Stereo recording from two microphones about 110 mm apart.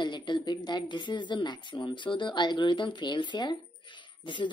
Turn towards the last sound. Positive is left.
turn(degrees=45)  # may be behind; listen again after turning